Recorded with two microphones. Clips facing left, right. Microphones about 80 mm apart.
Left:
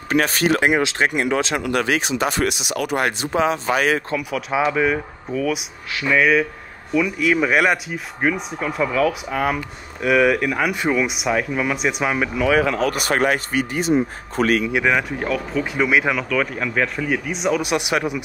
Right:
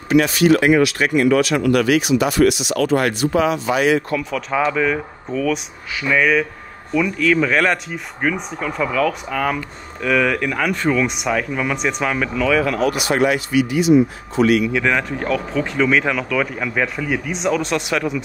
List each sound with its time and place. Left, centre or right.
0.1 s speech: left
0.6 s speech: left
3.7 s speech: left
4.2 s speech: centre
12.9 s speech: left
14.7 s speech: centre